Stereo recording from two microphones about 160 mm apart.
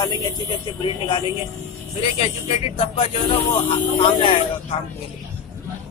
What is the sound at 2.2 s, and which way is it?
Speech, 35° left (ahead or behind).